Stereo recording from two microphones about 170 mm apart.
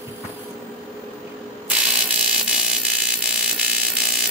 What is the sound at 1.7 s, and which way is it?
Ratchet, 5° right (ahead or behind).